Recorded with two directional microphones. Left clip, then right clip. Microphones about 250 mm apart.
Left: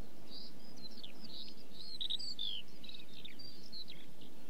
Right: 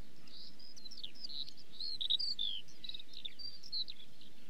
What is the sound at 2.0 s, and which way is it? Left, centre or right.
Cricket, centre.